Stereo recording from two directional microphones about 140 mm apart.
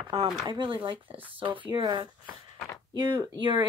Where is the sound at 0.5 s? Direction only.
35° right (ahead or behind).